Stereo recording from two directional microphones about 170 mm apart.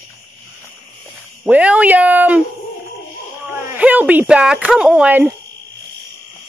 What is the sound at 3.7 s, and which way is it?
Speech, 10° right (ahead or behind).